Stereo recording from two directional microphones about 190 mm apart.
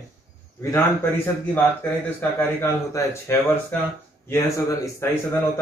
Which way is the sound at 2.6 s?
15° left (ahead or behind).